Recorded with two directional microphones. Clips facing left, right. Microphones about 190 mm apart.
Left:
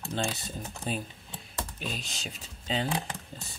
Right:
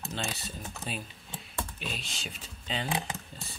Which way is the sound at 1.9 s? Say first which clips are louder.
Left 2 dB; 40° left (ahead or behind).